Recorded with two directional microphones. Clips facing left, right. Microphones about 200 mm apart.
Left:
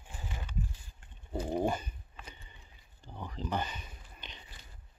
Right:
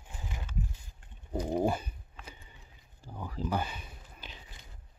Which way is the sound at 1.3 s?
15° right (ahead or behind).